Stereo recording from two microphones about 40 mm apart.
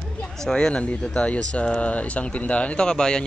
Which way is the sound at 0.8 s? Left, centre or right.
Left.